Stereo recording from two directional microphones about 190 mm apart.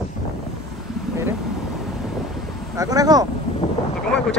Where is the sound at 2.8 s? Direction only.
20° right (ahead or behind).